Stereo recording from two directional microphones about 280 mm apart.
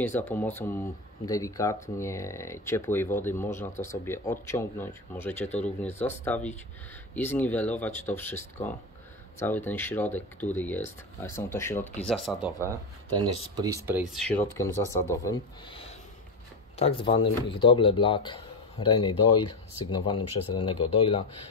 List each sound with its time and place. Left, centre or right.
0.0 s speech: centre
13.6 s speech: centre
14.3 s speech: centre